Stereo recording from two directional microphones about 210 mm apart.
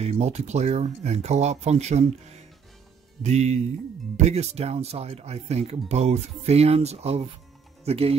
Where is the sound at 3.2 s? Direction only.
35° right (ahead or behind).